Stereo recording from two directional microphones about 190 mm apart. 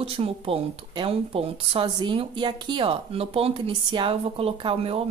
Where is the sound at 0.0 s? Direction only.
30° right (ahead or behind).